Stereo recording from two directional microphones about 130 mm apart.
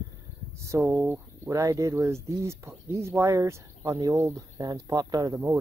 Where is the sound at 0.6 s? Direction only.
20° right (ahead or behind).